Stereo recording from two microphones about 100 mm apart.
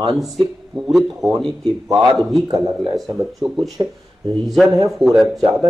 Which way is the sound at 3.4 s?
50° right (ahead or behind).